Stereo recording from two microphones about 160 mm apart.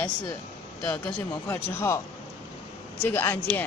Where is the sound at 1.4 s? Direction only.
15° left (ahead or behind).